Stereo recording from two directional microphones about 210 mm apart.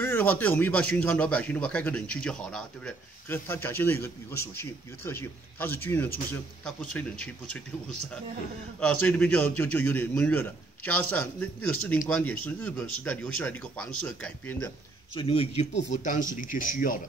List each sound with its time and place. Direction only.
0.0 s speech: 10° left (ahead or behind)
9.0 s speech: 5° left (ahead or behind)
15.1 s speech: 25° left (ahead or behind)